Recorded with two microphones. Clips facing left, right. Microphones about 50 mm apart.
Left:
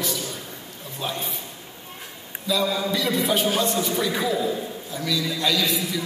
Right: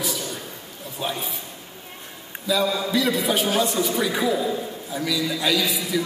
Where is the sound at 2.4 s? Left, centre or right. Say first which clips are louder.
Right 1 dB; centre.